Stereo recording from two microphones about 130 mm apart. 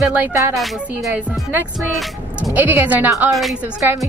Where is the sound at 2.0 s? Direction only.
Centre (ahead or behind).